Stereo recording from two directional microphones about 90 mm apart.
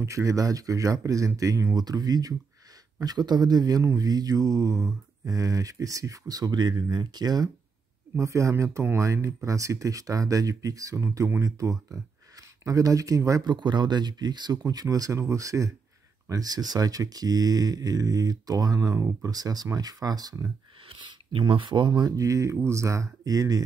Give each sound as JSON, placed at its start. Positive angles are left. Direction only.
{"t": 0.0, "sound": "mantra", "side_deg": -35}
{"t": 1.8, "sound": "speech", "side_deg": -45}
{"t": 3.8, "sound": "mantra", "side_deg": -40}
{"t": 8.2, "sound": "mantra", "side_deg": -35}
{"t": 11.2, "sound": "speech", "side_deg": -35}
{"t": 13.4, "sound": "speech", "side_deg": -55}
{"t": 20.9, "sound": "speech", "side_deg": -70}
{"t": 23.2, "sound": "mantra", "side_deg": -40}